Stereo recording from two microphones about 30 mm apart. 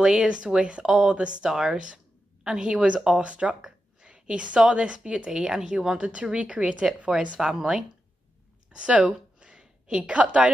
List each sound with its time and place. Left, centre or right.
0.0 s speech: right
0.8 s speech: right
1.1 s speech: right
1.5 s speech: centre; by 3.5 s right
3.6 s a sound: right
4.7 s speech: right
5.4 s speech: right
5.9 s speech: right
7.3 s speech: right
8.7 s a sound: right